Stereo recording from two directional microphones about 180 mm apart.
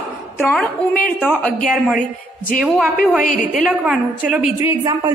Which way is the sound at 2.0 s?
50° left (ahead or behind).